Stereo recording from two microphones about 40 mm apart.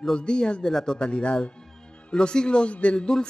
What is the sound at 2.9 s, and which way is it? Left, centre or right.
Speech, centre.